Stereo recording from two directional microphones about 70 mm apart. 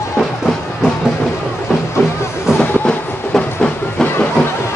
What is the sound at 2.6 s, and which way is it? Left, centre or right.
Train, centre.